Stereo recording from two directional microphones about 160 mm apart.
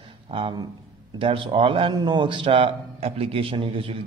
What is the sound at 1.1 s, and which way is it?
A man's voice, 35° right (ahead or behind).